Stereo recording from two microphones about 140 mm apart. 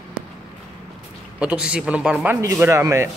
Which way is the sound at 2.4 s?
20° right (ahead or behind).